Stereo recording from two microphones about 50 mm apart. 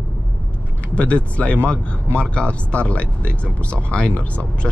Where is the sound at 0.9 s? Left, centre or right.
Left.